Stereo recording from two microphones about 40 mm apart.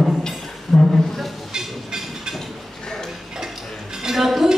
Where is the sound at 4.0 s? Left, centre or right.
Centre.